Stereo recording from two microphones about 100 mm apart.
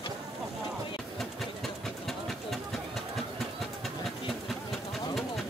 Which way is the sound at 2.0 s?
Centre (ahead or behind).